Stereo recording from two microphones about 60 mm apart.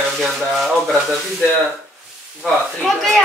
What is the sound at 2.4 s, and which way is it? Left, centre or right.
Speech, centre.